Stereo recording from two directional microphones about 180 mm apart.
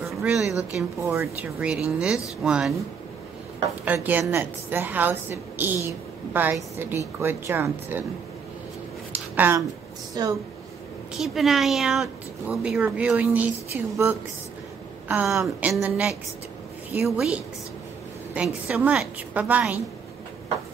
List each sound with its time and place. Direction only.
0.2 s speech: 5° right (ahead or behind)
1.0 s a woman's voice: 15° right (ahead or behind)
3.8 s a woman's voice: 10° right (ahead or behind)
9.3 s speech: 10° right (ahead or behind)
10.2 s a woman's voice: 20° right (ahead or behind)
11.1 s a woman's voice: centre (ahead or behind)